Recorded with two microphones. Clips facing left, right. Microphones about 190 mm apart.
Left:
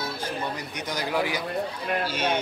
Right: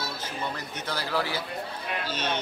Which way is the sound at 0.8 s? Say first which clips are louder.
Left 3 dB; 15° left (ahead or behind).